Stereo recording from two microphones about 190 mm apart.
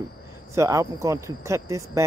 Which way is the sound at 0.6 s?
15° right (ahead or behind).